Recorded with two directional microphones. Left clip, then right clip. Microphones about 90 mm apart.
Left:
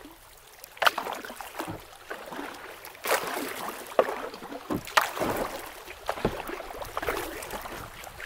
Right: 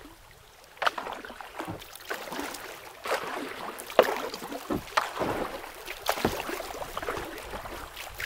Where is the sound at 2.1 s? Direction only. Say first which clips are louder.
Right 3 dB; 45° right (ahead or behind).